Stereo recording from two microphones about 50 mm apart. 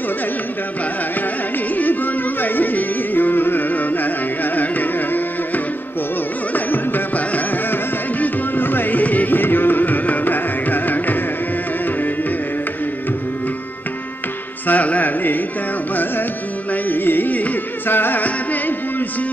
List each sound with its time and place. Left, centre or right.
2.4 s carnatic music: left
6.5 s music: left
14.7 s carnatic music: left
16.9 s carnatic music: left
17.8 s music: left